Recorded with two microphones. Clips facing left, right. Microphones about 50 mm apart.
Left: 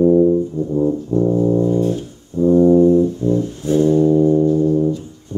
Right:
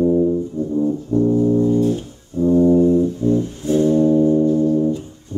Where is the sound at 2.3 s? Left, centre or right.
Right.